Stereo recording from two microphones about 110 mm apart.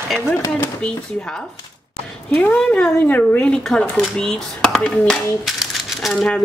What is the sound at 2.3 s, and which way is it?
Speech, 15° left (ahead or behind).